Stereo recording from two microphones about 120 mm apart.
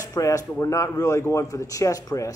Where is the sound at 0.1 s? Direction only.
25° left (ahead or behind).